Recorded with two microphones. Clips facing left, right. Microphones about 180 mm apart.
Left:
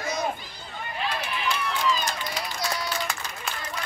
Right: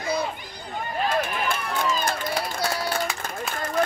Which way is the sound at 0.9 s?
45° right (ahead or behind).